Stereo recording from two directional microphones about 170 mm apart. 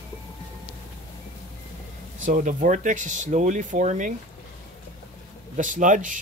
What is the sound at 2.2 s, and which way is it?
Speech, 50° right (ahead or behind).